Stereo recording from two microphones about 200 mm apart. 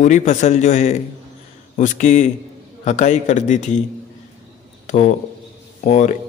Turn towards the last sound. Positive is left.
turn(degrees=35)  # may be behind; listen again after turning